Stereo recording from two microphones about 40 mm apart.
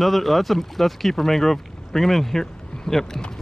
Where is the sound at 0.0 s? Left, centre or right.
Centre.